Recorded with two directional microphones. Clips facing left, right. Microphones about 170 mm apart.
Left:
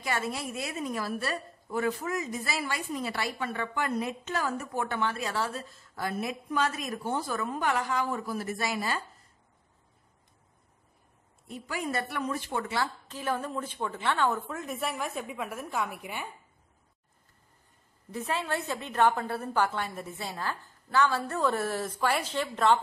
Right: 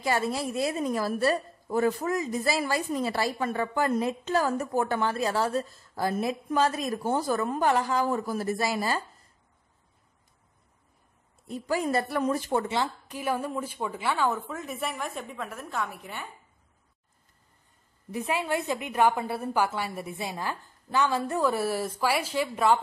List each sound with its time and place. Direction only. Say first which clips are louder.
0.0 s a woman's voice: right 5 dB; 35° right (ahead or behind)
11.4 s a woman's voice: right 6 dB; 35° right (ahead or behind)
12.6 s a woman's voice: right 3 dB; 20° right (ahead or behind); by 16.3 s 10° left (ahead or behind)
18.1 s a woman's voice: right 3 dB; 15° right (ahead or behind)